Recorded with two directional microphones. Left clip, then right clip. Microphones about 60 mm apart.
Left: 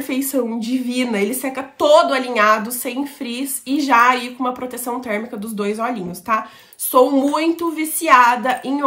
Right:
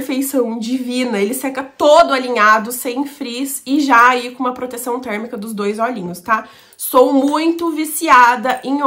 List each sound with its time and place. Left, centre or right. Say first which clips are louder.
0.0 s a woman's voice: right 3 dB; right